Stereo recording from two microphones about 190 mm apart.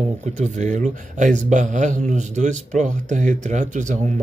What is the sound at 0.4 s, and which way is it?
Speech, 40° right (ahead or behind).